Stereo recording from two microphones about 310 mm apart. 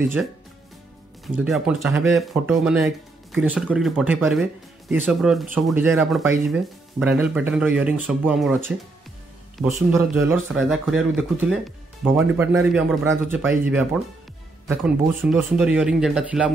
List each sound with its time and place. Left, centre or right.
0.0 s speech: centre